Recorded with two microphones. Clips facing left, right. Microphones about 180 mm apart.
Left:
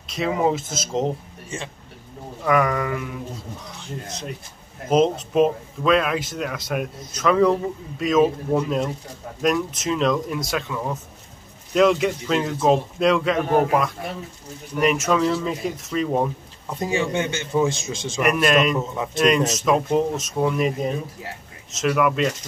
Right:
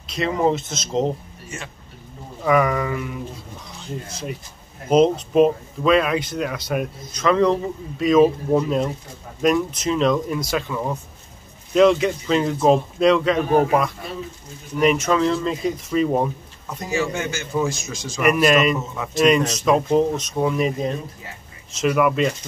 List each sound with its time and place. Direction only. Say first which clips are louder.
0.0 s speech: right 1 dB; centre (ahead or behind)
2.4 s speech: right 2 dB; 5° right (ahead or behind)
16.6 s a man's voice: left 1 dB; 30° left (ahead or behind)
18.2 s speech: right 2 dB; centre (ahead or behind)